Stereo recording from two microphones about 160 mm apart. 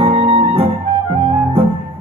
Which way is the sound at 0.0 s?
35° right (ahead or behind).